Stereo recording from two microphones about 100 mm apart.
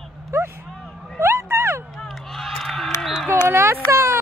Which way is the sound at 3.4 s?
25° right (ahead or behind).